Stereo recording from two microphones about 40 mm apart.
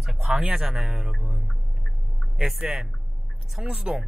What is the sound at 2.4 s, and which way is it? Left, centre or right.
Speech, centre.